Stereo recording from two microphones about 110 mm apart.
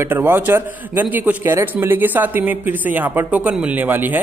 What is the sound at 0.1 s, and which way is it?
A man's voice, 20° right (ahead or behind).